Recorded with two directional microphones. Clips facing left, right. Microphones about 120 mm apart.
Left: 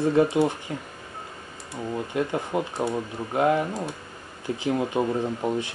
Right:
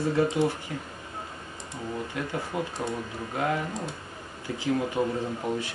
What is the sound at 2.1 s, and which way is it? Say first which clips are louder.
Speech: left 7 dB; 20° left (ahead or behind).